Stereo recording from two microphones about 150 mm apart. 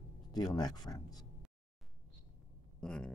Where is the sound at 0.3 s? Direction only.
25° left (ahead or behind).